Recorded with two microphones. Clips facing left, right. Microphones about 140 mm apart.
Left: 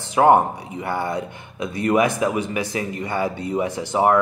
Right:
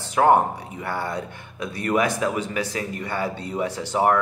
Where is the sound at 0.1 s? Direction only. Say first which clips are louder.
Left 2 dB; 15° left (ahead or behind).